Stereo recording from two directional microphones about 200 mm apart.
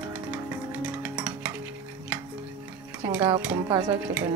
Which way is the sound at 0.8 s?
5° right (ahead or behind).